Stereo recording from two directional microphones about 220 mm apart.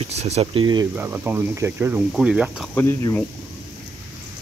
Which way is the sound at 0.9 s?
10° right (ahead or behind).